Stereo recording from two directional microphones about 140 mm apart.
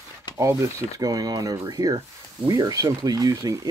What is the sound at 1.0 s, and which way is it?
Speech, 25° right (ahead or behind).